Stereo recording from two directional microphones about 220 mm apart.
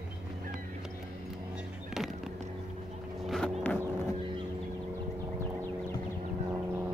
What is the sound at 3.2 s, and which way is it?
Vehicle, centre (ahead or behind).